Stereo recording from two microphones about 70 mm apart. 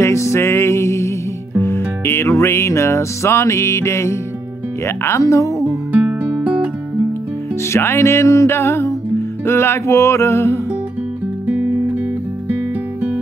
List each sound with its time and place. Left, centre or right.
0.0 s music: left
4.8 s speech: left
5.9 s music: right
7.7 s music: left
11.4 s music: right